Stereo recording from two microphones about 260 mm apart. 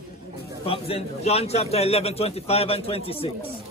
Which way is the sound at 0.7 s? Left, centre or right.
Left.